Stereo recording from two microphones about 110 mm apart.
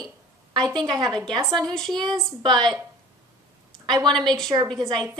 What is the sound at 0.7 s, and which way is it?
Speech, 40° right (ahead or behind).